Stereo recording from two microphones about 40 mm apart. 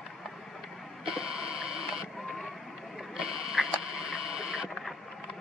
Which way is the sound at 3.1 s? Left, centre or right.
Centre.